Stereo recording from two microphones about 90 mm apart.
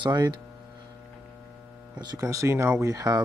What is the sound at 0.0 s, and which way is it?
Speech, 55° right (ahead or behind).